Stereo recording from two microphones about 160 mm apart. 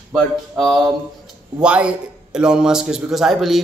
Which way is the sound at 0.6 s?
Centre (ahead or behind).